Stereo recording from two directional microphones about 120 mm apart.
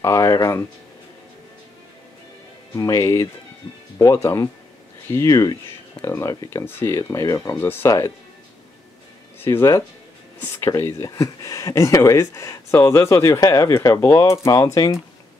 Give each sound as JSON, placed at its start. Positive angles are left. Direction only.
{"t": 0.0, "sound": "speech", "side_deg": 25}
{"t": 2.7, "sound": "speech", "side_deg": 25}
{"t": 7.5, "sound": "speech", "side_deg": 20}
{"t": 9.4, "sound": "speech", "side_deg": 20}